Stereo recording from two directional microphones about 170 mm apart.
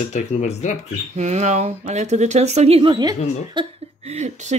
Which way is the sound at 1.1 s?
40° right (ahead or behind).